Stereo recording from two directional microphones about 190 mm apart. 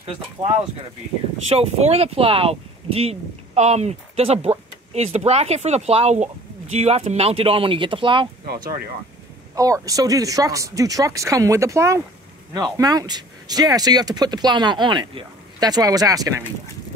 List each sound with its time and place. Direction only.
1.6 s speech: 35° right (ahead or behind)
9.6 s speech: 20° right (ahead or behind)